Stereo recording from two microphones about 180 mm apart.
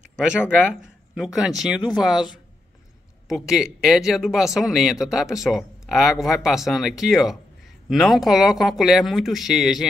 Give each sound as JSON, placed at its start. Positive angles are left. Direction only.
{"t": 0.2, "sound": "speech", "side_deg": -5}
{"t": 3.3, "sound": "speech", "side_deg": -5}